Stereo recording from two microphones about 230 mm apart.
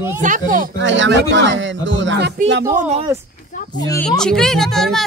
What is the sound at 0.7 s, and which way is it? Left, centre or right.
Speech, right.